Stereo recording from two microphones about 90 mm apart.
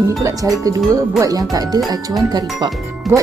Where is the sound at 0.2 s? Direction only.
40° right (ahead or behind).